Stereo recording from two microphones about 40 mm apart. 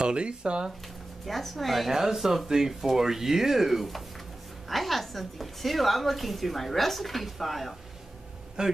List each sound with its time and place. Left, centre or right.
0.0 s speech: right
1.2 s a woman's voice: centre
8.6 s speech: centre